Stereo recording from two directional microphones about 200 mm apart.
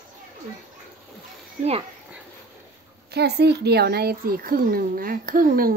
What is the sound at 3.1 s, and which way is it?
Speech, 55° right (ahead or behind).